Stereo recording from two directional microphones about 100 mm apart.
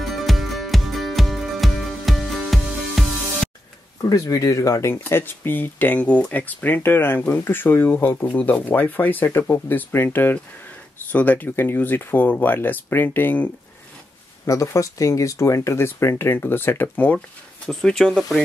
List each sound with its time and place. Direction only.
0.0 s music: centre (ahead or behind)
4.0 s speech: 35° left (ahead or behind); by 13.5 s 20° left (ahead or behind)
14.4 s speech: 30° left (ahead or behind); by 18.4 s 5° left (ahead or behind)